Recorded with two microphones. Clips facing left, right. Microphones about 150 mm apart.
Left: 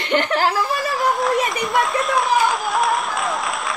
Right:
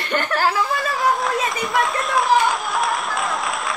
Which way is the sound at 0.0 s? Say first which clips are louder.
Left 2 dB; 20° left (ahead or behind).